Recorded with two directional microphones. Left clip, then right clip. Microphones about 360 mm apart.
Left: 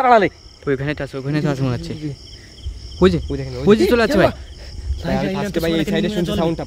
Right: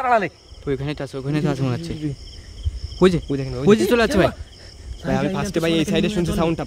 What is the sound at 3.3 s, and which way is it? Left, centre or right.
Speech, right.